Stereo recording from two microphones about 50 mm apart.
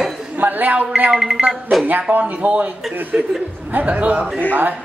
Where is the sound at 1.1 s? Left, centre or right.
Centre.